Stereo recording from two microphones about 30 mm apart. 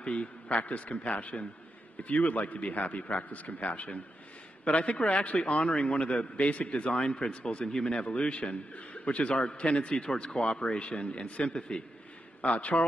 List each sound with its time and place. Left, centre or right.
0.2 s a man's voice: left
4.6 s a man's voice: left
7.0 s a man's voice: left